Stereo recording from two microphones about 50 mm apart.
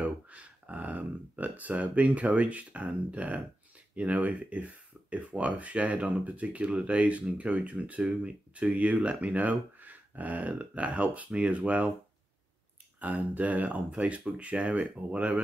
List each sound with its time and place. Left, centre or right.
0.0 s speech: right
13.0 s speech: right